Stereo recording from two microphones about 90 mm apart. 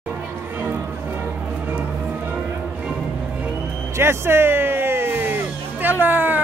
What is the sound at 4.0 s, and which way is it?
Music, 25° right (ahead or behind).